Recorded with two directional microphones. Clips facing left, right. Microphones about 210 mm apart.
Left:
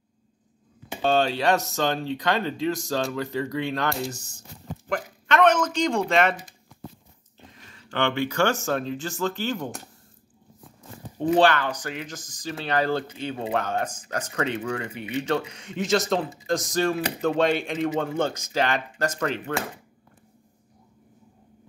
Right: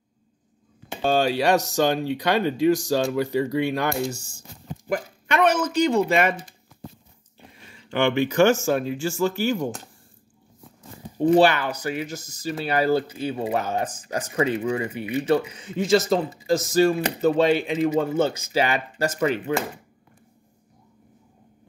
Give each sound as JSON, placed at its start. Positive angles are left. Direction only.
{"t": 1.5, "sound": "speech", "side_deg": -15}
{"t": 7.9, "sound": "speech", "side_deg": -15}
{"t": 11.3, "sound": "speech", "side_deg": -10}